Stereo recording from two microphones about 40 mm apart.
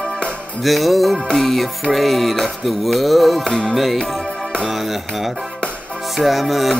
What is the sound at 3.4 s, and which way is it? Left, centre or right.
Music, centre.